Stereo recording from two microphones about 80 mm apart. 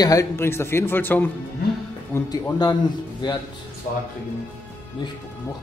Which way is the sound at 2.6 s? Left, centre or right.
Left.